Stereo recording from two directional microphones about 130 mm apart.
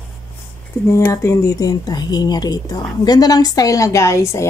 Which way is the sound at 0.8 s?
20° left (ahead or behind).